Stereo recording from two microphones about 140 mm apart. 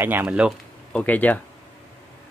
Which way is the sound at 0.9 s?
10° left (ahead or behind).